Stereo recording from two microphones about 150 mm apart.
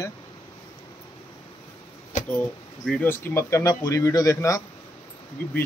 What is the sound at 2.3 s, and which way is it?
Speech, 5° left (ahead or behind).